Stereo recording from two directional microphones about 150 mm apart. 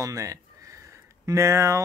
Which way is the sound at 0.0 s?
20° right (ahead or behind).